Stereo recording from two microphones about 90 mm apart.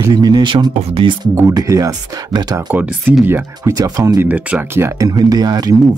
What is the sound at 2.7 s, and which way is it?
Speech, 15° right (ahead or behind).